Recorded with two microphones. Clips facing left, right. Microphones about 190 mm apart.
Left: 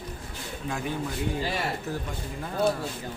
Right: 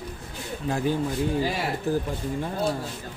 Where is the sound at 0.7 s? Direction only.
30° right (ahead or behind).